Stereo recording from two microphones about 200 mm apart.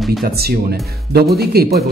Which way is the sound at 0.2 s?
50° right (ahead or behind).